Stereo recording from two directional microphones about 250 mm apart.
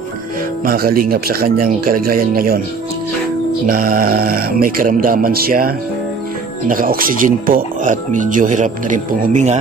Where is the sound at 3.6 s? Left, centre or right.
Right.